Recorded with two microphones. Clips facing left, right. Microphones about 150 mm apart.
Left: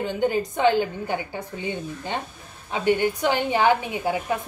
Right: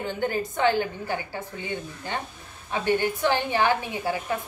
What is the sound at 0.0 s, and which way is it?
A woman's voice, 15° left (ahead or behind).